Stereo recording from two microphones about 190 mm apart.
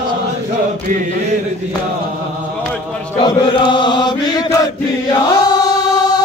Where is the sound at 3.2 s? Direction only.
25° left (ahead or behind).